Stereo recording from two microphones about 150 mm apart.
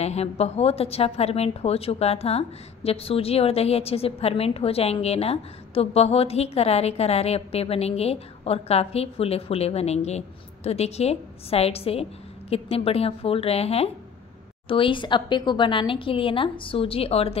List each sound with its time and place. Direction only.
0.0 s a woman's voice: 45° left (ahead or behind)